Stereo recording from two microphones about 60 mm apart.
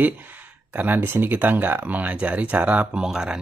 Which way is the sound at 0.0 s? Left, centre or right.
Right.